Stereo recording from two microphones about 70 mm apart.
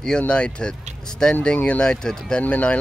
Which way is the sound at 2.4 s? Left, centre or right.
Centre.